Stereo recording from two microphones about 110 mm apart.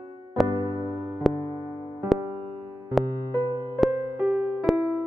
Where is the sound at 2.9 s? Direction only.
Centre (ahead or behind).